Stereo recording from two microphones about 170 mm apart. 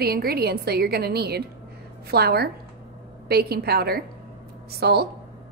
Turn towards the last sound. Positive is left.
turn(degrees=-70)  # may be behind; listen again after turning